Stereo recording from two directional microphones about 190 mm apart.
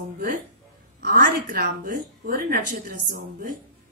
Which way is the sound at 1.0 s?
50° right (ahead or behind).